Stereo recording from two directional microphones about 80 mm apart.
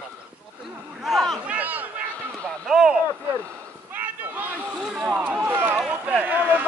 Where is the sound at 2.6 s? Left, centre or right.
Centre.